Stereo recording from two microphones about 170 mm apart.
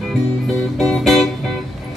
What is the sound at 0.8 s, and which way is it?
Music, centre (ahead or behind).